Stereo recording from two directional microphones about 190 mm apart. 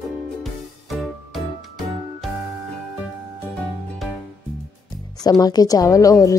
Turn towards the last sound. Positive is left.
turn(degrees=15)  # may be behind; listen again after turning